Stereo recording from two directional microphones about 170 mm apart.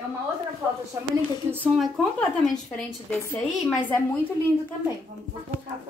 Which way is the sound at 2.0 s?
5° left (ahead or behind).